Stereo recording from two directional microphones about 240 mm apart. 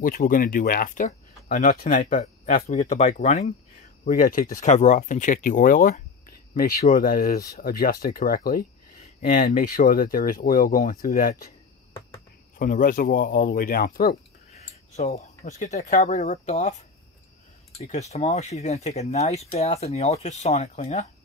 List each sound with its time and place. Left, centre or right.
0.0 s speech: left
12.5 s speech: left
17.7 s speech: left